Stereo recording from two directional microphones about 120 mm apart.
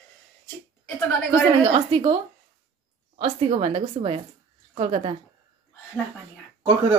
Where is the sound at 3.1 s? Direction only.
55° right (ahead or behind).